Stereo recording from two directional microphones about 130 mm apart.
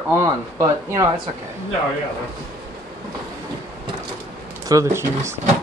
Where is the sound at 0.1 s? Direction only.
20° right (ahead or behind).